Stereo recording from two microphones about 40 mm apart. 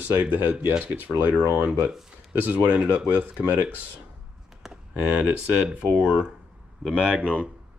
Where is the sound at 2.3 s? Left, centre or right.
Right.